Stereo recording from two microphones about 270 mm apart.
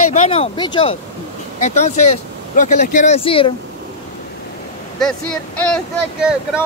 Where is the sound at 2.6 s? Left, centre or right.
Left.